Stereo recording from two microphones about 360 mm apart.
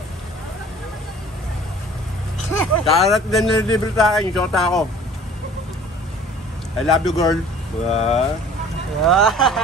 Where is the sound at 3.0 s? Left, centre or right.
Centre.